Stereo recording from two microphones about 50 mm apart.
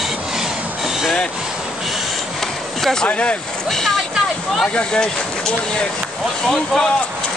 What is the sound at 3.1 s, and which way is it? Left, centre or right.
Speech, left.